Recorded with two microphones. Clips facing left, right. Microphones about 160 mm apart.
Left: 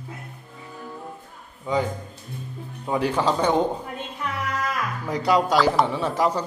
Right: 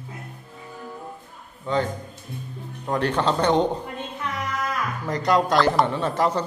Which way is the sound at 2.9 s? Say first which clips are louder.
Even; 10° left (ahead or behind).